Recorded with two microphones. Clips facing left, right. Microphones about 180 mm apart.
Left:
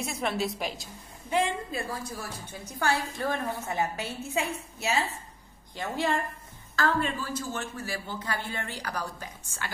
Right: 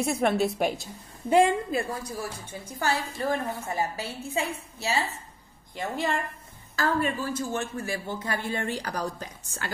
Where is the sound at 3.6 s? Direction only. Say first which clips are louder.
Even; centre (ahead or behind).